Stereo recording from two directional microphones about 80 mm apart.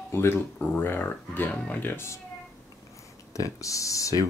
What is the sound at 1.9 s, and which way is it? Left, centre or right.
Speech, left.